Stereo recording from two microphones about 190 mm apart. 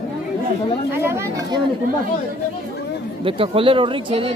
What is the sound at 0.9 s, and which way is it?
Speech, 10° right (ahead or behind).